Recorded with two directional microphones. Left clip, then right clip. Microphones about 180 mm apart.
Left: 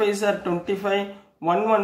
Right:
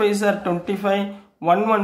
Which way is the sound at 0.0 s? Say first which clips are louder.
Right 3 dB; 30° right (ahead or behind).